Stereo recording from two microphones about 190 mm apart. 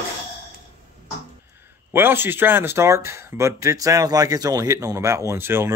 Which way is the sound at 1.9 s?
10° right (ahead or behind).